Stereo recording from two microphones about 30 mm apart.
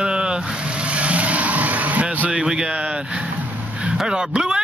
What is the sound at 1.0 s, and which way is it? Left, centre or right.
Vehicle, right.